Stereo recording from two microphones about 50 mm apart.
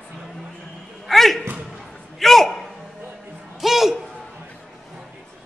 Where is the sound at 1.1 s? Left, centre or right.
Centre.